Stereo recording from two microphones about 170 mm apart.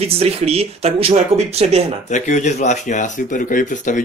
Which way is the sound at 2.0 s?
45° left (ahead or behind).